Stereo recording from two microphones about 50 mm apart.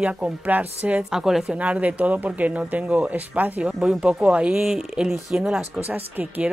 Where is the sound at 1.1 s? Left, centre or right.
Centre.